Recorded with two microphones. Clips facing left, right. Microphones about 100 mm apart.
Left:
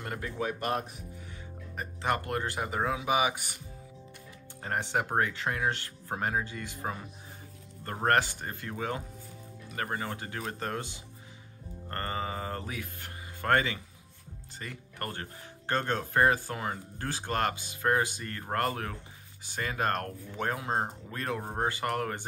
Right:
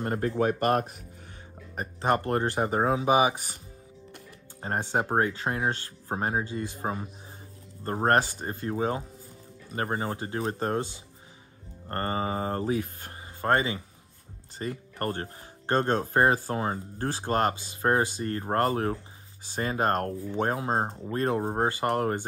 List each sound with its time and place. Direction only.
0.0 s speech: 40° right (ahead or behind)
1.8 s speech: 35° right (ahead or behind)
4.6 s speech: 30° right (ahead or behind)
11.9 s speech: 30° right (ahead or behind)
13.4 s speech: 25° right (ahead or behind)